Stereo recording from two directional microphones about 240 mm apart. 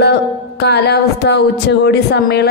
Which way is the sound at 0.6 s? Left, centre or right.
Left.